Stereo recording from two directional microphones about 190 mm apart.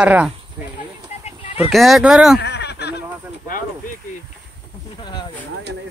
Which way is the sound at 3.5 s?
45° left (ahead or behind).